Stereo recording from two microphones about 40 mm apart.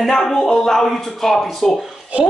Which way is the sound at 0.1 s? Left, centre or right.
Centre.